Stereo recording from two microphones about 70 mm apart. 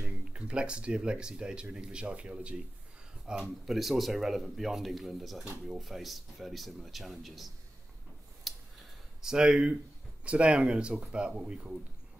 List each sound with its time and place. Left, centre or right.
0.0 s speech: centre
3.3 s speech: centre
8.5 s a sound: centre
9.2 s speech: centre